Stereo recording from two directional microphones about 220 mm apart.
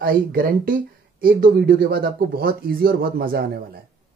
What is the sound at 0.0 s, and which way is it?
Speech, 40° right (ahead or behind).